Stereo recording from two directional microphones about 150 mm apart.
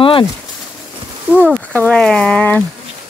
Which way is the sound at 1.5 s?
10° left (ahead or behind).